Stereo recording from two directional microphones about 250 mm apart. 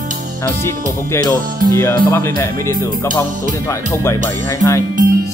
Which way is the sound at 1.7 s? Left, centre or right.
Centre.